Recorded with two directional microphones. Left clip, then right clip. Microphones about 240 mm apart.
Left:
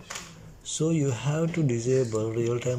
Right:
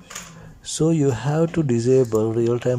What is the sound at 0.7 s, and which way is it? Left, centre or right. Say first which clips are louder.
Speech: right 7 dB; right.